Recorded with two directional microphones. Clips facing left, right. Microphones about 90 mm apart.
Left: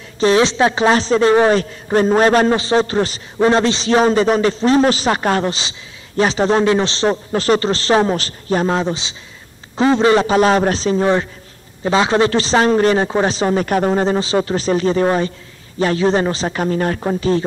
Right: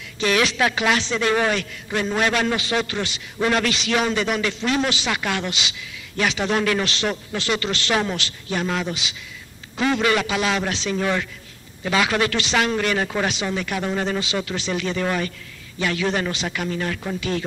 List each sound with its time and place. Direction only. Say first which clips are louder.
0.2 s a man's voice: left 7 dB; 30° left (ahead or behind)